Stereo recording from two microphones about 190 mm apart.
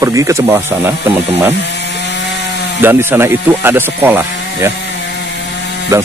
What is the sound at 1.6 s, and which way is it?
Wood, 65° left (ahead or behind).